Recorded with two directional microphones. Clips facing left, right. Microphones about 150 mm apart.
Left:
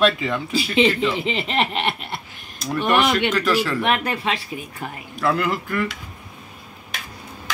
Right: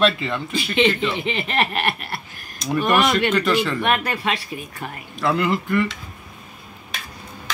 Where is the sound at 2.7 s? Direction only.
10° right (ahead or behind).